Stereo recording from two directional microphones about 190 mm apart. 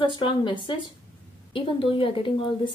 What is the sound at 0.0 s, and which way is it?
Speech, 25° left (ahead or behind).